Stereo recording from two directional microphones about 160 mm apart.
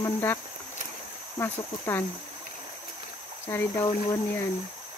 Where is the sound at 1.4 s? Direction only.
15° left (ahead or behind).